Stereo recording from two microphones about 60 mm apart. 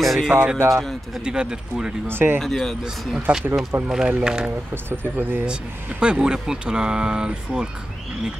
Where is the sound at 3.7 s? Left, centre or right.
Right.